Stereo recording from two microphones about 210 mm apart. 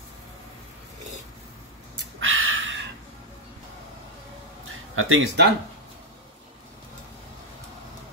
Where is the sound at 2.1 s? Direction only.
70° right (ahead or behind).